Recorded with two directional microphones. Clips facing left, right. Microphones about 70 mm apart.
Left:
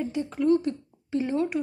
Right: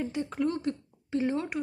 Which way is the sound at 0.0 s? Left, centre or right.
Right.